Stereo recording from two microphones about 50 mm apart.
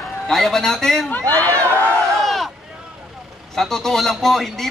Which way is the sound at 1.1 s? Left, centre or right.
Left.